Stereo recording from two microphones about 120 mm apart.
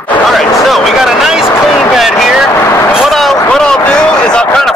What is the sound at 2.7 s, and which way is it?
Speech, 20° left (ahead or behind).